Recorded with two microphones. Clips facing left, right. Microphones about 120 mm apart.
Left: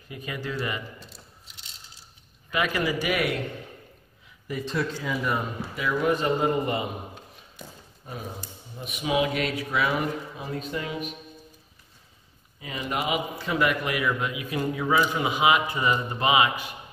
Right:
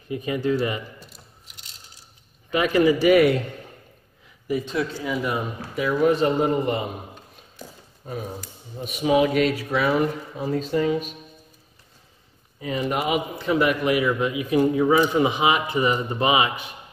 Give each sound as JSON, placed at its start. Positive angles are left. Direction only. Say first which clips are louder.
{"t": 0.1, "sound": "a man's voice", "louder": "right 10 dB", "side_deg": -25}
{"t": 2.6, "sound": "speech", "louder": "right 9 dB", "side_deg": -30}
{"t": 4.5, "sound": "speech", "louder": "right 4 dB", "side_deg": -5}
{"t": 5.8, "sound": "a man's voice", "louder": "right 5 dB", "side_deg": -30}
{"t": 8.8, "sound": "speech", "louder": "right 6 dB", "side_deg": -30}
{"t": 12.5, "sound": "a man's voice", "louder": "right 5 dB", "side_deg": -35}